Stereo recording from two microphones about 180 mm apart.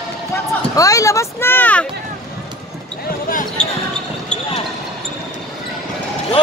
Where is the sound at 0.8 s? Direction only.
20° left (ahead or behind).